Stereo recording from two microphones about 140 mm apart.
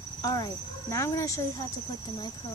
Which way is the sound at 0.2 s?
25° left (ahead or behind).